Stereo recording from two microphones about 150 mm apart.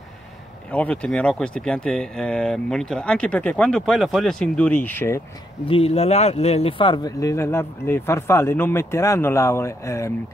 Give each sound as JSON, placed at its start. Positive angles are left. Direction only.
{"t": 0.7, "sound": "speech", "side_deg": 10}
{"t": 5.7, "sound": "speech", "side_deg": 40}